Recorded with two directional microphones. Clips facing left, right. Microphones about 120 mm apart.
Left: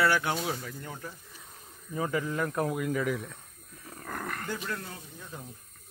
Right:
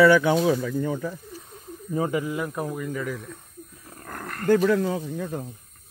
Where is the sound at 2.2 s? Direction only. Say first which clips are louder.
Right 1 dB; 10° right (ahead or behind).